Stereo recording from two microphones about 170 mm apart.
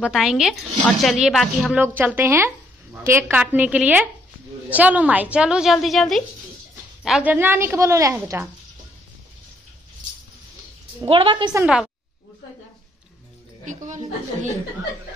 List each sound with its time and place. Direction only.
0.0 s a woman's voice: 5° right (ahead or behind)
1.8 s a woman's voice: 10° right (ahead or behind)
11.1 s a woman's voice: 30° right (ahead or behind)
11.6 s a woman's voice: 5° right (ahead or behind)
13.7 s a woman's voice: 45° right (ahead or behind)